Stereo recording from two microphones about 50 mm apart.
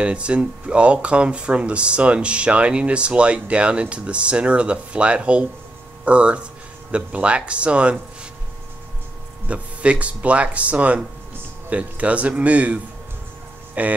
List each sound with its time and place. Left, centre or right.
0.0 s speech: right
9.5 s speech: right